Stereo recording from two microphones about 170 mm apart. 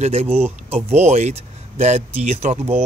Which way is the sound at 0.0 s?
40° right (ahead or behind).